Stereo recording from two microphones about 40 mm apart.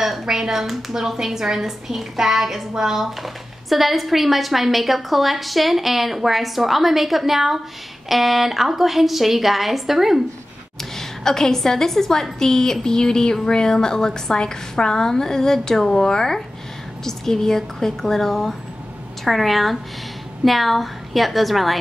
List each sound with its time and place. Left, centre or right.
0.3 s a woman's voice: centre
11.0 s a woman's voice: centre